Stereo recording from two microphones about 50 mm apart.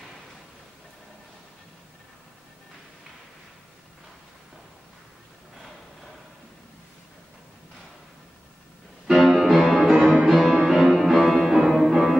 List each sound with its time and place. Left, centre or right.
9.0 s music: centre
10.5 s music: centre
10.8 s music: centre